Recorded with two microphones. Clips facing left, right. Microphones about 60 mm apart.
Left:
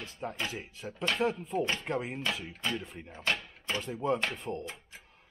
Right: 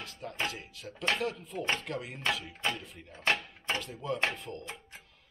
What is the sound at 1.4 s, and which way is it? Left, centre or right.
Speech, left.